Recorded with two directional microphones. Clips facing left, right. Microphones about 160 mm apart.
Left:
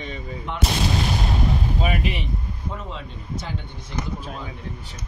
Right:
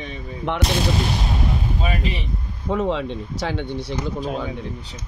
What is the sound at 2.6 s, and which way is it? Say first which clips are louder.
Speech: right 15 dB; 85° right.